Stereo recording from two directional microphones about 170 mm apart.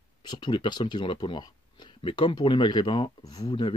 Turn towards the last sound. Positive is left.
turn(degrees=30)  # may be behind; listen again after turning